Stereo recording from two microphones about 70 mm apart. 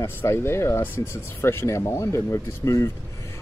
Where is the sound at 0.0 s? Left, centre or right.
Left.